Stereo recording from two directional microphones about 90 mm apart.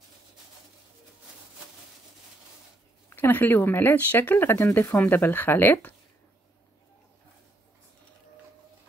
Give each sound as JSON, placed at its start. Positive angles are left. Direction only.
{"t": 3.1, "sound": "speech", "side_deg": 20}